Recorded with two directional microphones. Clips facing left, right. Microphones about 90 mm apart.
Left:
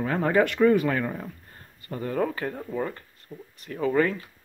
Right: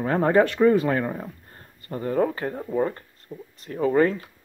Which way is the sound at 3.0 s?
35° right (ahead or behind).